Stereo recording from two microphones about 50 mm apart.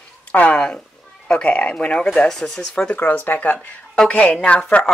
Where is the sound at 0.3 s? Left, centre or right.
Left.